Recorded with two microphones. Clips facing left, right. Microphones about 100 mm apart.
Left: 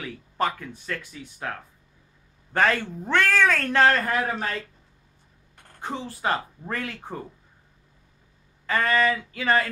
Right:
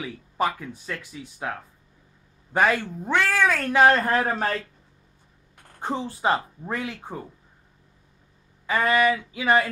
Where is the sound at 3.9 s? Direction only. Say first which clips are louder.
Right 3 dB; 30° right (ahead or behind).